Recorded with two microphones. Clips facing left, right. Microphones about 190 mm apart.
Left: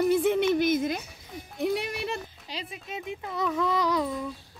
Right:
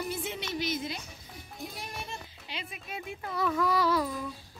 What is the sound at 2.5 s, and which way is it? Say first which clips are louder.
Oink: left 4 dB; 40° left (ahead or behind).